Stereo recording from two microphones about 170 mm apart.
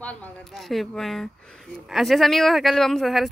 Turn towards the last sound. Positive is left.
turn(degrees=0)  # may be behind; listen again after turning